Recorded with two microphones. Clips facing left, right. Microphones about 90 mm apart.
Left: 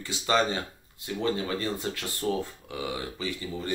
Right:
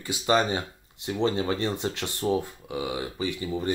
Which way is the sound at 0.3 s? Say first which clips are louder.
Right 2 dB; 15° right (ahead or behind).